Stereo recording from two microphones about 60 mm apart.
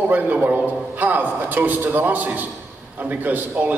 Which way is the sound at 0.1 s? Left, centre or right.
Right.